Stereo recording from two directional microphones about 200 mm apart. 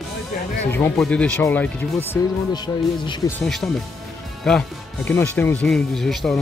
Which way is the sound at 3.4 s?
Centre (ahead or behind).